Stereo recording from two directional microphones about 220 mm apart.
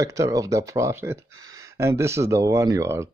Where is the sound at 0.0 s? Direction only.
15° right (ahead or behind).